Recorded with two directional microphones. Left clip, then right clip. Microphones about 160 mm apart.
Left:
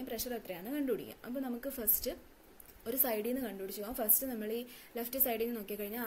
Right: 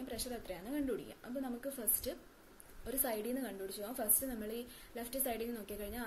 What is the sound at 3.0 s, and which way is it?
A woman's voice, 40° left (ahead or behind).